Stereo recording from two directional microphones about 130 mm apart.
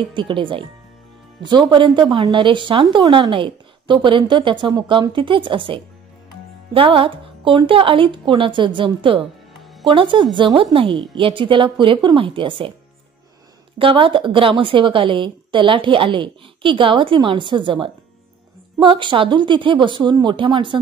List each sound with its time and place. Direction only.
0.1 s a woman's voice: 40° right (ahead or behind)
13.7 s a woman's voice: 45° right (ahead or behind)